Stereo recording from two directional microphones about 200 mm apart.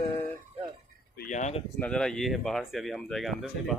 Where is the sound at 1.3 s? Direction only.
35° left (ahead or behind).